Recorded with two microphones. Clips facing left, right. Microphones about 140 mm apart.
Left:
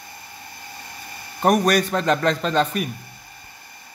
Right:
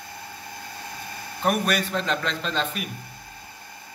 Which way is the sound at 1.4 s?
40° left (ahead or behind).